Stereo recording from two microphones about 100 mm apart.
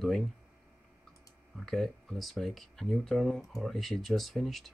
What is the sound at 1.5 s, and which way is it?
Speech, centre (ahead or behind).